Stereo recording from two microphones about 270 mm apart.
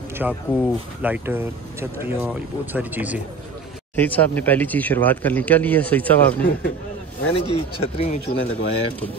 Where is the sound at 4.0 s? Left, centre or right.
Centre.